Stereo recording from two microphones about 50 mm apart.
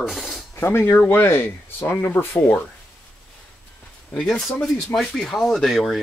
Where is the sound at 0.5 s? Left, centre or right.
Left.